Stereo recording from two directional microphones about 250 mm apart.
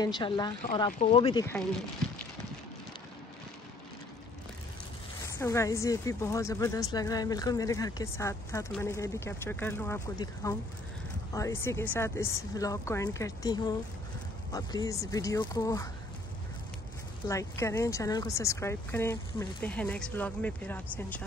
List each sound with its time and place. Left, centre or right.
0.0 s a woman's voice: centre
5.2 s a woman's voice: centre
17.3 s a woman's voice: centre